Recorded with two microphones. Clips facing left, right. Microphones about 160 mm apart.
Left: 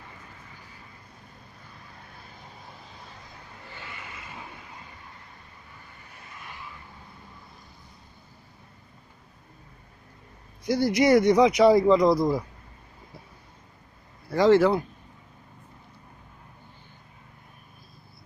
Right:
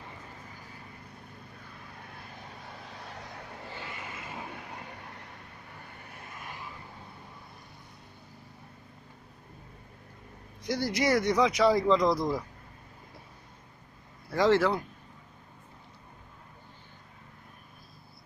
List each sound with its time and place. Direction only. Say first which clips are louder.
3.1 s vehicle: right 4 dB; 75° right (ahead or behind)
4.6 s a sound: right 3 dB; 65° right (ahead or behind)
10.6 s speech: left 7 dB; 10° left (ahead or behind)
14.3 s speech: left 5 dB; centre (ahead or behind)